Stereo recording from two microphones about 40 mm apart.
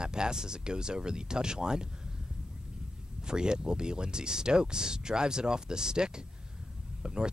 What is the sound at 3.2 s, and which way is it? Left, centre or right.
Speech, right.